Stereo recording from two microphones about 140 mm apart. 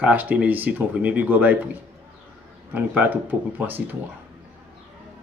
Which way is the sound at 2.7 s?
10° right (ahead or behind).